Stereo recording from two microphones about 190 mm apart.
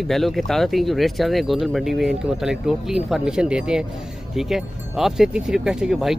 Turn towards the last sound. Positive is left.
turn(degrees=-5)  # may be behind; listen again after turning